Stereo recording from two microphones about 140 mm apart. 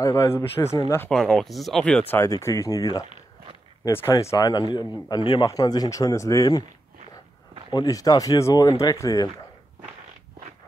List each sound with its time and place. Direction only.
0.0 s a man's voice: 25° left (ahead or behind)
1.1 s speech: 5° left (ahead or behind)
2.1 s a man's voice: 20° left (ahead or behind)
7.7 s a man's voice: 25° left (ahead or behind)